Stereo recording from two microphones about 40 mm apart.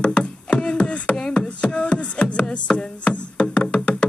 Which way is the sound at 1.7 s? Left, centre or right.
Left.